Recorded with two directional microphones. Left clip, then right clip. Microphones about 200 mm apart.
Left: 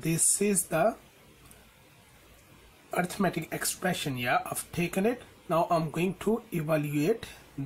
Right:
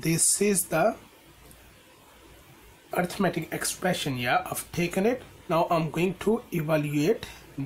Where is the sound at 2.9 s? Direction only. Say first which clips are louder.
Right 2 dB; 15° left (ahead or behind).